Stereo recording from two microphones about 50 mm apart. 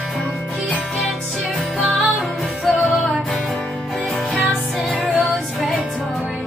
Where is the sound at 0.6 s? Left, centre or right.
Centre.